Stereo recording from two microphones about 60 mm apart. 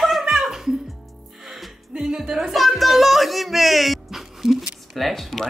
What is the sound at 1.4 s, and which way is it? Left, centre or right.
Music, centre.